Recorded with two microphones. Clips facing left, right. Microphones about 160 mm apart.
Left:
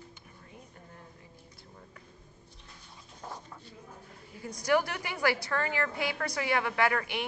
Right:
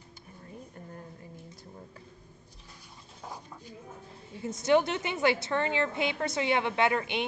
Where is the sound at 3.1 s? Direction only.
10° right (ahead or behind).